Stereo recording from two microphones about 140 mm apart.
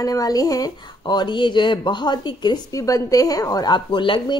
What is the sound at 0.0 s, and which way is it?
A woman's voice, 25° left (ahead or behind).